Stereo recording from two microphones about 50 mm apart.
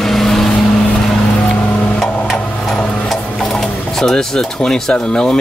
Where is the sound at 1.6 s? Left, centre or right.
Left.